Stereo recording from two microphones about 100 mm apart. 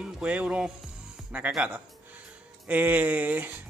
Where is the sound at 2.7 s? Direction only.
15° right (ahead or behind).